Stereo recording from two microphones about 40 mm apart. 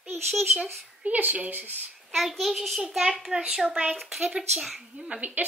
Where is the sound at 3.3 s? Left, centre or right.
Right.